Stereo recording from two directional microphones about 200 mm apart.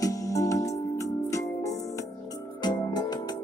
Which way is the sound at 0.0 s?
15° left (ahead or behind).